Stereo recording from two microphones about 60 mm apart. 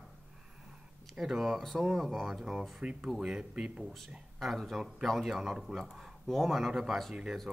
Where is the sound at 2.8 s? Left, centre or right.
Centre.